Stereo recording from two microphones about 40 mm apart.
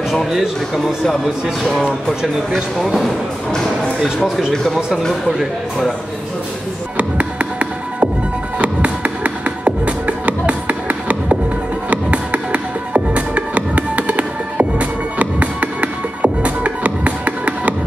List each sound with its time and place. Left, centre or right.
0.3 s speech: centre
1.7 s speech: centre
2.5 s speech: centre
7.0 s music: right